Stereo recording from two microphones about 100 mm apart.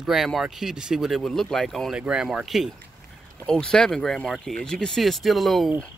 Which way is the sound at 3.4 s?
5° left (ahead or behind).